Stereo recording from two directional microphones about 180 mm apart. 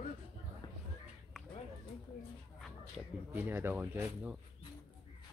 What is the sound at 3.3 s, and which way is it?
Speech, 10° right (ahead or behind).